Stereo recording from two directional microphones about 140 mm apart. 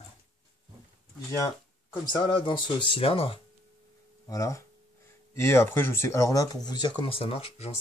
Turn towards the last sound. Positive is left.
turn(degrees=45)  # may be behind; listen again after turning